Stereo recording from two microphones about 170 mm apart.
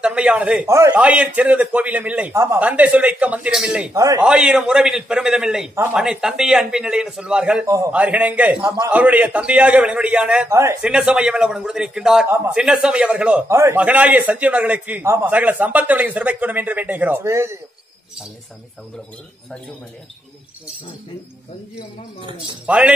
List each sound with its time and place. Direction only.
0.0 s a man's voice: 5° right (ahead or behind)
3.9 s speech: 20° right (ahead or behind)
4.2 s a man's voice: 5° right (ahead or behind)
7.6 s speech: 20° right (ahead or behind)
7.9 s a man's voice: 10° right (ahead or behind)
8.6 s speech: 20° right (ahead or behind)
8.9 s a man's voice: 10° right (ahead or behind)
10.5 s a man's voice: 15° right (ahead or behind)
10.8 s a man's voice: 5° right (ahead or behind)
22.7 s a man's voice: 10° right (ahead or behind)